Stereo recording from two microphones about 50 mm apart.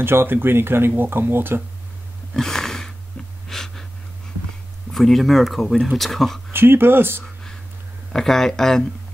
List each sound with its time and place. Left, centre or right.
0.0 s speech: right
2.3 s a sound: centre
3.4 s gasp: centre
4.9 s speech: centre
6.5 s speech: right
8.1 s speech: centre